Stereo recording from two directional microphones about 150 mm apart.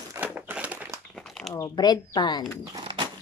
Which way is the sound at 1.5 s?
25° left (ahead or behind).